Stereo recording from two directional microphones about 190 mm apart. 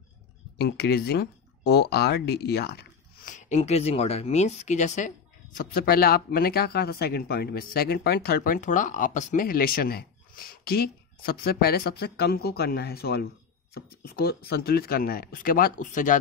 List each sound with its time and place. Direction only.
0.6 s speech: 60° left (ahead or behind)
3.4 s speech: 35° left (ahead or behind)
5.8 s speech: 55° left (ahead or behind)